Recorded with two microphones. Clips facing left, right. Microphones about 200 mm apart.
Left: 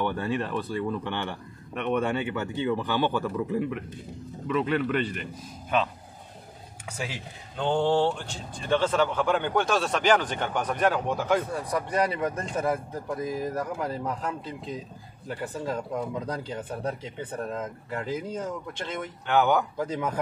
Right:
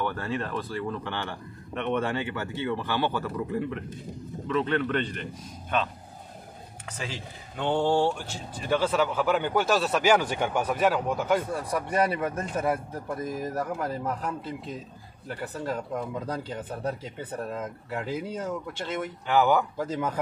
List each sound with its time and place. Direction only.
0.0 s speech: 15° left (ahead or behind)
6.9 s speech: 10° left (ahead or behind)
7.5 s speech: 5° right (ahead or behind)